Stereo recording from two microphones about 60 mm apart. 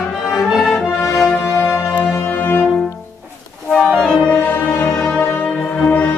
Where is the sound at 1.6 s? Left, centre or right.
Left.